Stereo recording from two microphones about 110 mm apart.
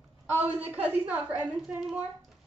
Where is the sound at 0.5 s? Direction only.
15° right (ahead or behind).